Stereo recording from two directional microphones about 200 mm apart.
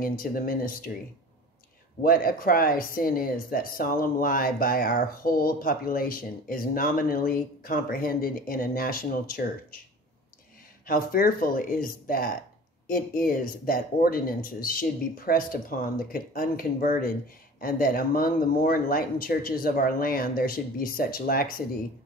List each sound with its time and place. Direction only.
0.0 s speech: 45° left (ahead or behind)
2.0 s speech: 45° left (ahead or behind)
10.9 s speech: 45° left (ahead or behind)